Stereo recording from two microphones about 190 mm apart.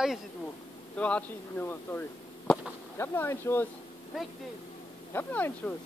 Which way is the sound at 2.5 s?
10° left (ahead or behind).